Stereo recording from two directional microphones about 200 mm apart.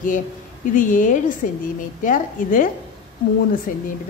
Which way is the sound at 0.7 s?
40° left (ahead or behind).